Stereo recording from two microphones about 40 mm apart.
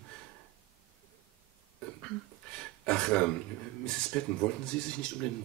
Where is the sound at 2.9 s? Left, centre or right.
Left.